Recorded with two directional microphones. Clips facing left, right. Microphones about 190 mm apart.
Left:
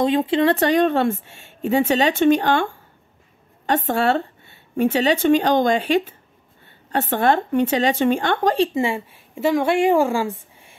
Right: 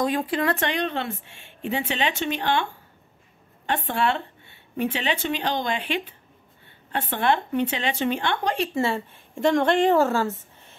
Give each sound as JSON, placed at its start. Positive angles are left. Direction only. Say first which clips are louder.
{"t": 0.0, "sound": "a woman's voice", "louder": "left 6 dB", "side_deg": 25}
{"t": 8.7, "sound": "a woman's voice", "louder": "left 3 dB", "side_deg": 15}